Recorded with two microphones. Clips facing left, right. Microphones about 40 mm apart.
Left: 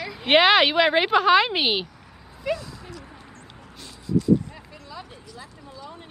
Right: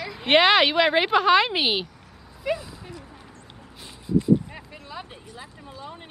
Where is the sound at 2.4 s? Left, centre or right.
Centre.